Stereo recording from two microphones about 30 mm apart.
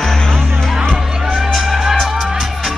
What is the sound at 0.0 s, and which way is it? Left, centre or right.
Music, centre.